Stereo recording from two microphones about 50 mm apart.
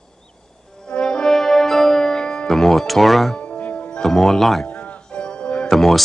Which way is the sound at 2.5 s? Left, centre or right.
Centre.